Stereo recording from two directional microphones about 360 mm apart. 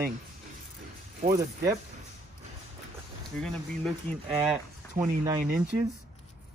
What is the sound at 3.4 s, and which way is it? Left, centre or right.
Speech, centre.